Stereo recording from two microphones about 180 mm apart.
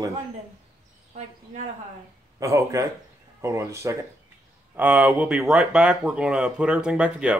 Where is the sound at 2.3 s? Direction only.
15° right (ahead or behind).